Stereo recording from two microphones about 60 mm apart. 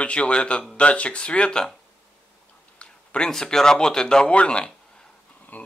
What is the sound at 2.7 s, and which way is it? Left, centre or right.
Speech, centre.